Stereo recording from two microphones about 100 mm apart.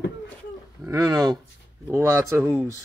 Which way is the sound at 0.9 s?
35° right (ahead or behind).